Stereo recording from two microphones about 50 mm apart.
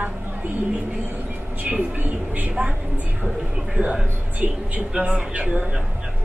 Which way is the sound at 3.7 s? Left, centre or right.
Right.